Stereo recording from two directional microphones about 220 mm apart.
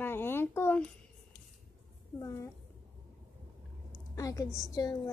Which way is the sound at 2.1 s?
15° left (ahead or behind).